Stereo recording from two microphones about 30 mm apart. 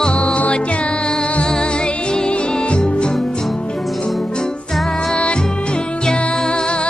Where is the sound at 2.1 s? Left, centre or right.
Left.